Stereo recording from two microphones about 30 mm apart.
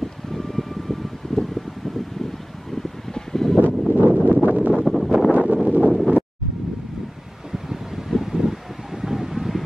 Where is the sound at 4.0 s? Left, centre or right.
Right.